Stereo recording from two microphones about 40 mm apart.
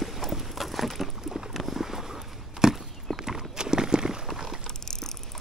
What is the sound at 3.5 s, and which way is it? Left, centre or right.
Horse, centre.